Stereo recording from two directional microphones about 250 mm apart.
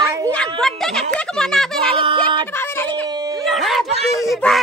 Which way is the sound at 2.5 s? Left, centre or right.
Centre.